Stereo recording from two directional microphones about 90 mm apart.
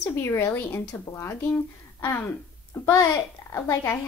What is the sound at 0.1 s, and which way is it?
A woman's voice, 30° left (ahead or behind).